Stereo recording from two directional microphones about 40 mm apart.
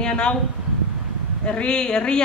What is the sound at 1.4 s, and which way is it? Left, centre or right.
Speech, left.